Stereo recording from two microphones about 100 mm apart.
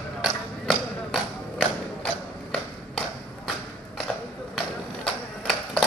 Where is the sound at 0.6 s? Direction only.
5° left (ahead or behind).